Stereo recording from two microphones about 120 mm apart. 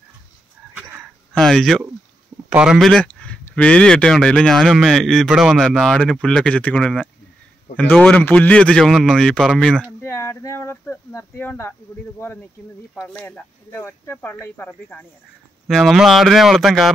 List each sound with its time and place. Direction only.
1.3 s a man's voice: 5° left (ahead or behind)
10.0 s speech: 20° left (ahead or behind)
13.1 s a man's voice: 10° left (ahead or behind)
15.6 s speech: centre (ahead or behind)